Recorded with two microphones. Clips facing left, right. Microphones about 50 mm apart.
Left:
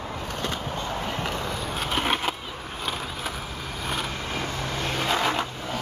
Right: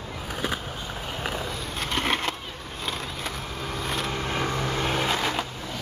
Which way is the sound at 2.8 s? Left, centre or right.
Centre.